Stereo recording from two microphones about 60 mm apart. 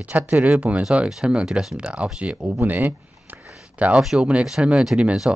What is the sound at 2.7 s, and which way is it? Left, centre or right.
Speech, right.